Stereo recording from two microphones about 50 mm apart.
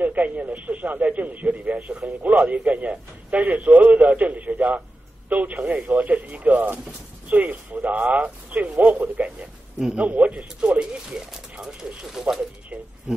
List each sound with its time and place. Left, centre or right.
0.0 s a man's voice: right
12.1 s speech: centre